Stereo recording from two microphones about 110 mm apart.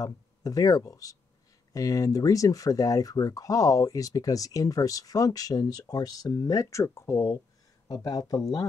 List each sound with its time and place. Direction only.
0.0 s speech: 30° left (ahead or behind)